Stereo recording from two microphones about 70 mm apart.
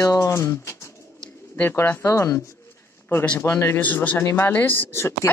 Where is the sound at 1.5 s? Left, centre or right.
Left.